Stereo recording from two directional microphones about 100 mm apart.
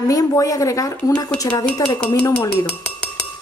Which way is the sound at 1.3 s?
10° left (ahead or behind).